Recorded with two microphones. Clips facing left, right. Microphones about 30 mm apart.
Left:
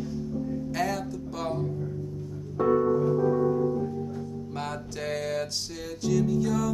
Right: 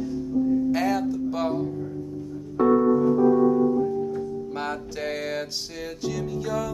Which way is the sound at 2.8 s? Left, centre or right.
Centre.